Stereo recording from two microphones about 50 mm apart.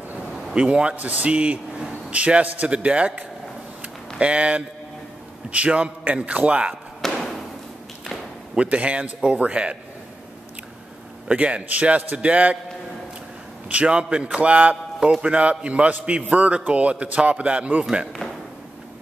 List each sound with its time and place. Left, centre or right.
0.6 s a man's voice: right
4.2 s a man's voice: right
6.7 s basketball bounce: centre
8.5 s a man's voice: right
11.2 s a man's voice: right
13.7 s a man's voice: right